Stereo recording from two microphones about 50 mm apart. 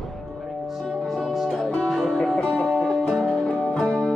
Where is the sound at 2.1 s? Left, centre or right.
Centre.